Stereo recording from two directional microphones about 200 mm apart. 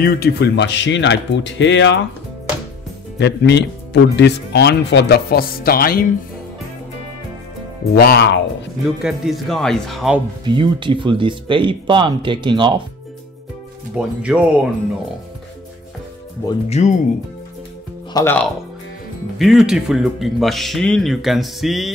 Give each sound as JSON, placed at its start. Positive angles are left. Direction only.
{"t": 0.0, "sound": "speech", "side_deg": 50}
{"t": 3.2, "sound": "speech", "side_deg": 60}
{"t": 7.9, "sound": "speech", "side_deg": 50}
{"t": 8.8, "sound": "speech", "side_deg": 0}
{"t": 10.4, "sound": "speech", "side_deg": -25}
{"t": 13.9, "sound": "speech", "side_deg": -5}
{"t": 16.6, "sound": "speech", "side_deg": 30}
{"t": 18.1, "sound": "speech", "side_deg": 10}
{"t": 19.3, "sound": "speech", "side_deg": 0}